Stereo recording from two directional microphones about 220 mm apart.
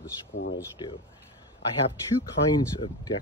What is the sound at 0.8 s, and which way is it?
Speech, 25° left (ahead or behind).